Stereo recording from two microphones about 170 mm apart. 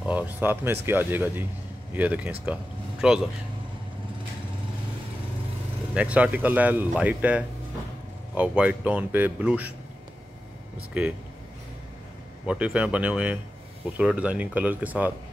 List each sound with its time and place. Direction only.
0.0 s a sound: 10° right (ahead or behind)
0.8 s speech: 10° right (ahead or behind)
5.9 s speech: 5° right (ahead or behind)
12.4 s speech: 5° right (ahead or behind)